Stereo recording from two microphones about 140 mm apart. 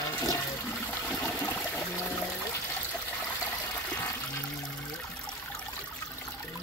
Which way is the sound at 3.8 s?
10° left (ahead or behind).